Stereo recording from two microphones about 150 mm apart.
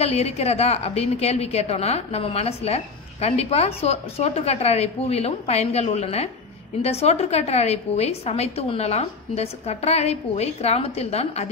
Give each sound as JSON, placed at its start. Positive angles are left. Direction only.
{"t": 0.0, "sound": "a woman's voice", "side_deg": 45}